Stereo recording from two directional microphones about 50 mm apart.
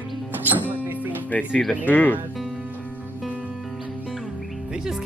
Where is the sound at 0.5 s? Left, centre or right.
Right.